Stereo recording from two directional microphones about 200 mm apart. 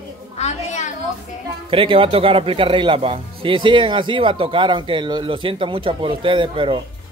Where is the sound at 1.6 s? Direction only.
25° right (ahead or behind).